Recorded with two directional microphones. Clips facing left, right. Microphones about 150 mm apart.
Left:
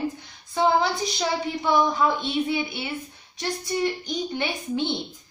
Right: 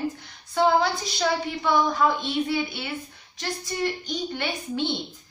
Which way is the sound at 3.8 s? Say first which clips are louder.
Even; 15° left (ahead or behind).